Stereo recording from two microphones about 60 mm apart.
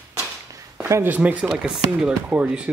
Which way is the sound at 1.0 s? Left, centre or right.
Right.